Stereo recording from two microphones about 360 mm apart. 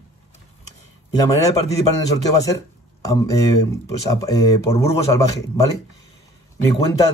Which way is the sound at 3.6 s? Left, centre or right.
Centre.